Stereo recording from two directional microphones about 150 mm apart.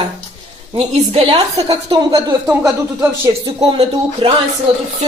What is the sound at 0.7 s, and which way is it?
Speech, 40° right (ahead or behind).